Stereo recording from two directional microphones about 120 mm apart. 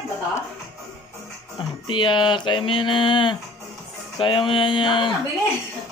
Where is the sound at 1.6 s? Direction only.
40° left (ahead or behind).